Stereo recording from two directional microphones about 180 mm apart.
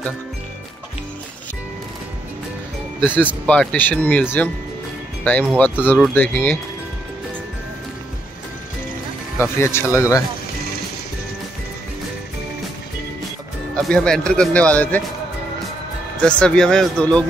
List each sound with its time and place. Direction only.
3.4 s speech: 5° left (ahead or behind)
9.6 s speech: 15° left (ahead or behind)
13.7 s speech: 5° left (ahead or behind)
16.2 s speech: 5° left (ahead or behind)